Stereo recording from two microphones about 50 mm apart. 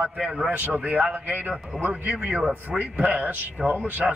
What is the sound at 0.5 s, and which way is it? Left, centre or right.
A man's voice, right.